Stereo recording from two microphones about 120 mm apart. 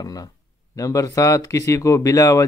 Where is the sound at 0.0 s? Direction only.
30° left (ahead or behind).